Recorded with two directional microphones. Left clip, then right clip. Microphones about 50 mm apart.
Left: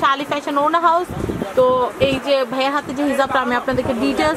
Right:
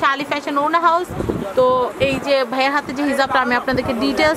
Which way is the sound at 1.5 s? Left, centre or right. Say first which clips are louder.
Even; centre.